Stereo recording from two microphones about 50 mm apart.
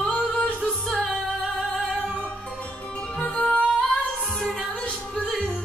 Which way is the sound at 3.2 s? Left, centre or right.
Left.